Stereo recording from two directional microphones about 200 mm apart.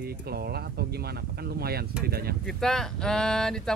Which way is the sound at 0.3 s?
50° right (ahead or behind).